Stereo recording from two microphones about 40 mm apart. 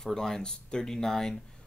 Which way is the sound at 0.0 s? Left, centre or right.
Centre.